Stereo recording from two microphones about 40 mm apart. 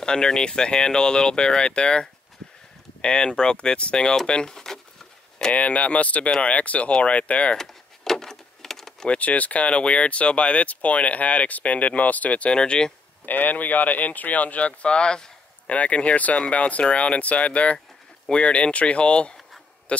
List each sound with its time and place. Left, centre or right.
0.0 s speech: centre
5.5 s speech: left
7.5 s a sound: centre
9.1 s speech: left
12.5 s speech: left
13.2 s speech: left
15.7 s speech: left
19.9 s a sound: left